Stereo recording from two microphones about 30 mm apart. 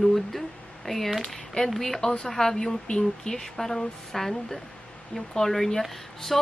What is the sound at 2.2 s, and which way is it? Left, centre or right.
A woman's voice, centre.